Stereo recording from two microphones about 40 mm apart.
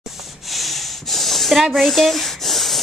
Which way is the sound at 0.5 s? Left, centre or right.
Centre.